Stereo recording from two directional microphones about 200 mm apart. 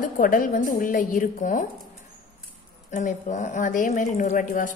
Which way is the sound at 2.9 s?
40° left (ahead or behind).